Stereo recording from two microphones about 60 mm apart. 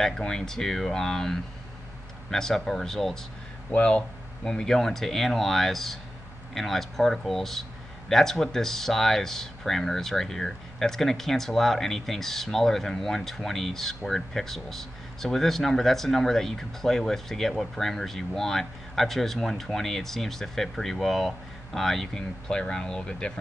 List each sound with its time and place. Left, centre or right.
0.0 s speech: centre
3.7 s speech: centre